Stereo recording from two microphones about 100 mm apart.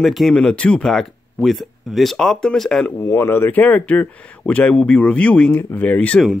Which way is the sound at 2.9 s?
25° left (ahead or behind).